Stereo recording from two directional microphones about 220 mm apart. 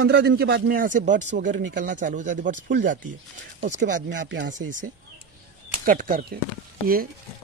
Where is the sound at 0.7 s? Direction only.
35° right (ahead or behind).